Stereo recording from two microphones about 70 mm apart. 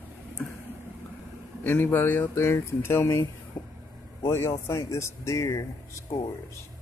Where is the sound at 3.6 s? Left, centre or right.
Left.